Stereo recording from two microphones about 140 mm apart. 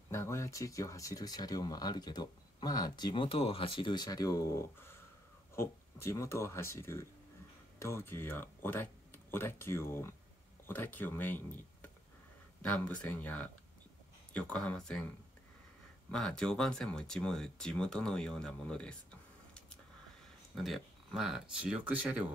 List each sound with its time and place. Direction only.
0.1 s speech: 20° left (ahead or behind)
16.1 s speech: 5° left (ahead or behind)
20.5 s speech: centre (ahead or behind)